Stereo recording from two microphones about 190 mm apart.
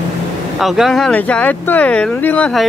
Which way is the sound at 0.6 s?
Centre (ahead or behind).